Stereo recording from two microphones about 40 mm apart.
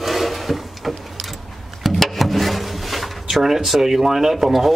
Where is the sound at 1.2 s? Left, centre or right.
Centre.